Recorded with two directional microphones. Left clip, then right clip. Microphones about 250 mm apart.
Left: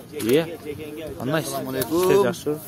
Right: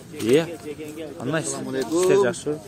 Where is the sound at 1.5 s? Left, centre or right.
Left.